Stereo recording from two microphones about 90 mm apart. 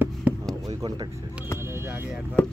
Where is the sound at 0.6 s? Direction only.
55° right (ahead or behind).